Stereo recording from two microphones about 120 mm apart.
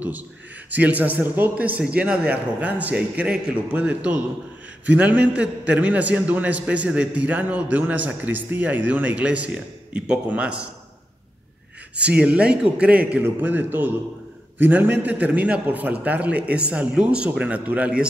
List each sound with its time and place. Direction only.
0.7 s a man's voice: 15° right (ahead or behind)
12.0 s a man's voice: 10° right (ahead or behind)